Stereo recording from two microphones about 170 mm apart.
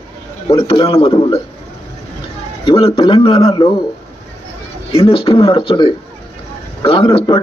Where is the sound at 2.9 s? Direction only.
35° left (ahead or behind).